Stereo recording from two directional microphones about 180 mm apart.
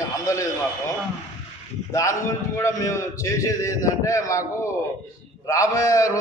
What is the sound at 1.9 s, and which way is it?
A man's voice, 15° left (ahead or behind).